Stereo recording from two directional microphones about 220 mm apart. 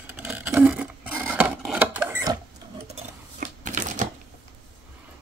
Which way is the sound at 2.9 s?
35° right (ahead or behind).